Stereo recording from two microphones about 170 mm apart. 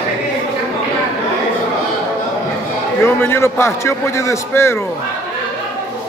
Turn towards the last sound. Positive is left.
turn(degrees=15)  # may be behind; listen again after turning